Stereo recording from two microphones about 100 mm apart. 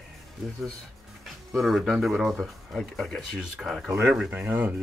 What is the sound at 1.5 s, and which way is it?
Speech, centre (ahead or behind).